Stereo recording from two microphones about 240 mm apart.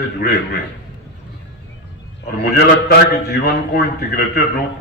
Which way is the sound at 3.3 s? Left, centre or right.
Left.